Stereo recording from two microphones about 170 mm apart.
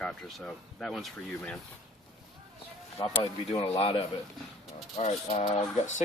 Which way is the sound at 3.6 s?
35° left (ahead or behind).